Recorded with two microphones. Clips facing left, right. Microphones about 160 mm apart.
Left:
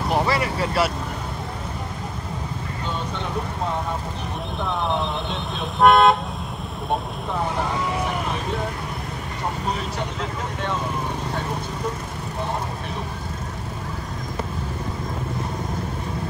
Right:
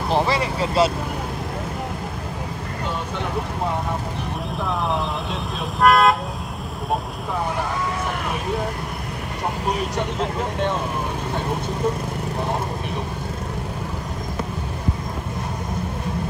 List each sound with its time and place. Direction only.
0.1 s vehicle: 25° right (ahead or behind)
4.8 s vehicle: centre (ahead or behind)